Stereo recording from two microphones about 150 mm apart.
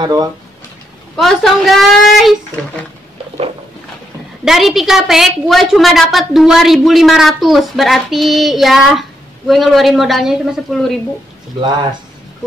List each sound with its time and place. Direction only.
0.0 s speech: 25° right (ahead or behind)
1.1 s a woman's voice: centre (ahead or behind)
4.5 s a woman's voice: centre (ahead or behind)